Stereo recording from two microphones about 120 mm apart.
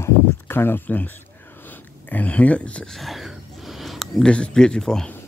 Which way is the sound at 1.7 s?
15° left (ahead or behind).